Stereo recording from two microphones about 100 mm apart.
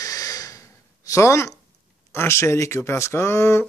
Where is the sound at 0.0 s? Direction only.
35° left (ahead or behind).